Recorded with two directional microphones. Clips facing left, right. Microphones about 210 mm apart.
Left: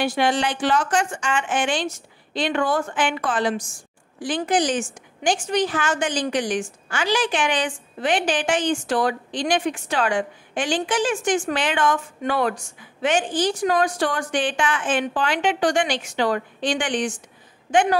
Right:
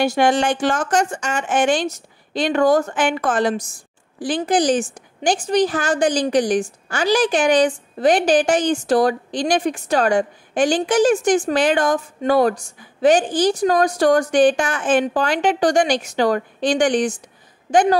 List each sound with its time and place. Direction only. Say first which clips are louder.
0.0 s a woman's voice: right 4 dB; 45° right (ahead or behind)